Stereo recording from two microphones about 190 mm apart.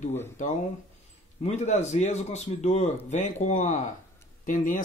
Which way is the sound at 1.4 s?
40° left (ahead or behind).